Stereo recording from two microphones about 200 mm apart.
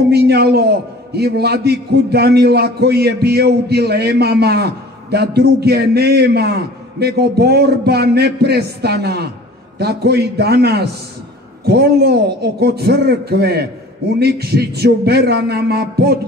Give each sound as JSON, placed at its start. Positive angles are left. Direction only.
{"t": 0.1, "sound": "a man's voice", "side_deg": -55}